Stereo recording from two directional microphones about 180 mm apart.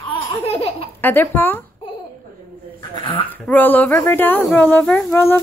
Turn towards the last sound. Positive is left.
turn(degrees=10)  # may be behind; listen again after turning